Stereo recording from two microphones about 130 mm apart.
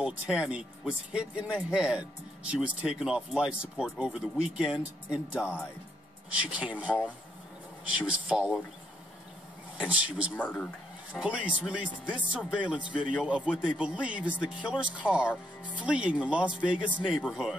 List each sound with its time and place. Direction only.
0.0 s speech: 10° right (ahead or behind)
9.8 s speech: 10° right (ahead or behind)
10.3 s speech: 10° left (ahead or behind)
11.1 s speech: 10° right (ahead or behind)